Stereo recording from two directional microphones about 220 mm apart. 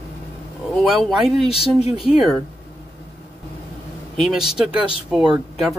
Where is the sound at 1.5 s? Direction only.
25° left (ahead or behind).